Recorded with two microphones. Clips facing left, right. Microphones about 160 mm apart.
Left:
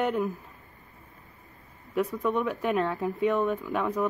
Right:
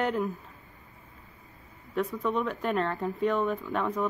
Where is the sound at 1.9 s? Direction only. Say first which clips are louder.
Left 2 dB; 10° left (ahead or behind).